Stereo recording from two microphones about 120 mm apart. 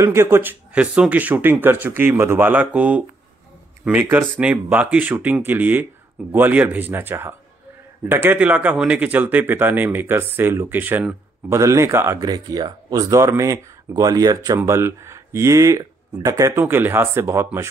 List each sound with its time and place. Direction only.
0.0 s speech: 20° right (ahead or behind)
11.5 s speech: 25° right (ahead or behind)
12.2 s speech: 35° right (ahead or behind)